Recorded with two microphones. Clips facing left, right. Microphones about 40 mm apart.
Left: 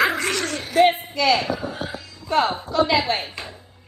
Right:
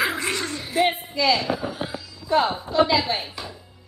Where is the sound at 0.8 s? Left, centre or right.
Left.